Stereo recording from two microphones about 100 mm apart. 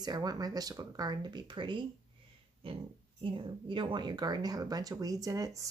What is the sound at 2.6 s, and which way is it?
A woman's voice, 65° right (ahead or behind).